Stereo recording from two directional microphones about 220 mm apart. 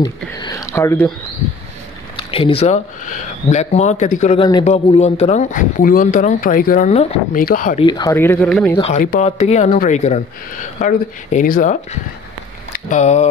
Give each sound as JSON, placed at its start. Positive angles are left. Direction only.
{"t": 0.0, "sound": "speech", "side_deg": 15}
{"t": 2.1, "sound": "speech", "side_deg": 25}
{"t": 7.8, "sound": "speech", "side_deg": 15}
{"t": 8.7, "sound": "speech", "side_deg": 30}